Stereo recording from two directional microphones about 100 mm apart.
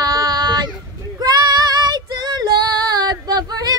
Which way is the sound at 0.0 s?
40° right (ahead or behind).